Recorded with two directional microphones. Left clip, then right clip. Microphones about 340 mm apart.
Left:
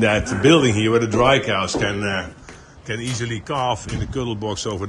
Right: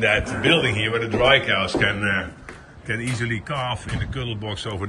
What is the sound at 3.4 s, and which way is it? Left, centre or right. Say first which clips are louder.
A man's voice: left 5 dB; centre.